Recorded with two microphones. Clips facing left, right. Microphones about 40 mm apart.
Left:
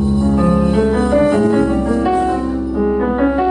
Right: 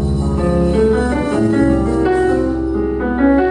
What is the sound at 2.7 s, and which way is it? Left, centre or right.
Music, centre.